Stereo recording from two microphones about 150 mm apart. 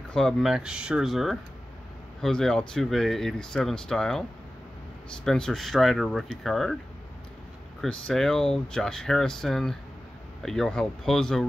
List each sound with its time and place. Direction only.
0.1 s speech: 5° left (ahead or behind)
5.2 s speech: 5° left (ahead or behind)
7.8 s speech: centre (ahead or behind)